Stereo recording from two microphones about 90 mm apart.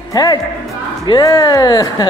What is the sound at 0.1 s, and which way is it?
Speech, 45° left (ahead or behind).